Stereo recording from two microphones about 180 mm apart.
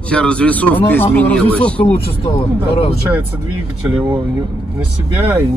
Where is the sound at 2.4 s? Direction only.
35° left (ahead or behind).